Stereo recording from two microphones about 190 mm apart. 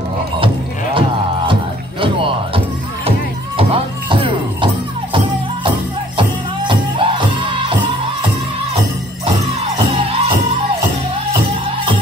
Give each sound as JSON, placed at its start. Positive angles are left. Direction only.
{"t": 0.9, "sound": "music", "side_deg": -25}
{"t": 6.7, "sound": "music", "side_deg": -25}
{"t": 9.9, "sound": "music", "side_deg": -30}